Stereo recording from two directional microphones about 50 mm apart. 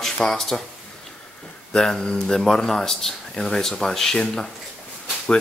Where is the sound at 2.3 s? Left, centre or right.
Centre.